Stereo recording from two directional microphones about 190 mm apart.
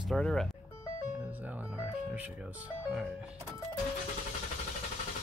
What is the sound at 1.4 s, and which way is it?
Music, 10° right (ahead or behind).